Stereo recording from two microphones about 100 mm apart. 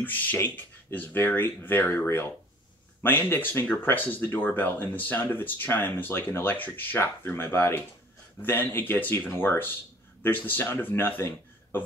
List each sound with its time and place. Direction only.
0.0 s a man's voice: 20° left (ahead or behind)